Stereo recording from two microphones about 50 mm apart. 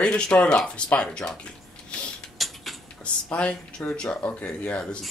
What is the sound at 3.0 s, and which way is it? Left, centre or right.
Speech, left.